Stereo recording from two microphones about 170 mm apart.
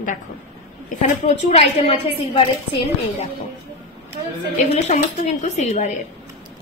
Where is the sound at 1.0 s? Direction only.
35° left (ahead or behind).